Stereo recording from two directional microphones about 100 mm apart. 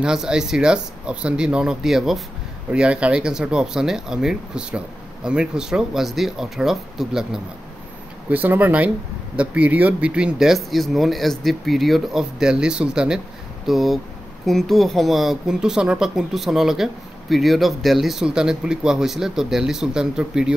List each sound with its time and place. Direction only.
0.0 s speech: 5° right (ahead or behind)
8.3 s speech: 15° right (ahead or behind)